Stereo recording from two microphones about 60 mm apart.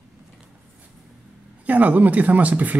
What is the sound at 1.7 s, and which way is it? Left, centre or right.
Speech, right.